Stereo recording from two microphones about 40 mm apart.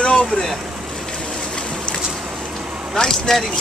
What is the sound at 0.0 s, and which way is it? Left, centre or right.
Boat, left.